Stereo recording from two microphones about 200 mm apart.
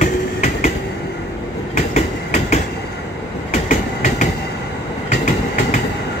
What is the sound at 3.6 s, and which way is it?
Train, 40° left (ahead or behind).